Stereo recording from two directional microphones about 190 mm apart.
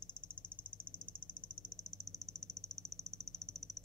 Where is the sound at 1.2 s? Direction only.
5° left (ahead or behind).